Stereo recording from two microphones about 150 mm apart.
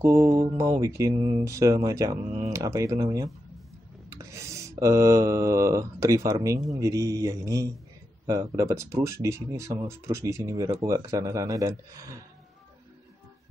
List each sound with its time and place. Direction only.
0.0 s speech: 20° right (ahead or behind)